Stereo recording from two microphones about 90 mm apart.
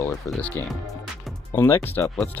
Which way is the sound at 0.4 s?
20° left (ahead or behind).